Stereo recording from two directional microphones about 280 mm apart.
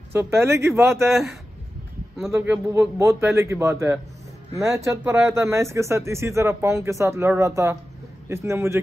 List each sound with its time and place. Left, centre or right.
0.1 s speech: centre